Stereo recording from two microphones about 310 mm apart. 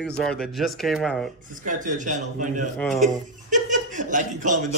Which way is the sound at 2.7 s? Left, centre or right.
Centre.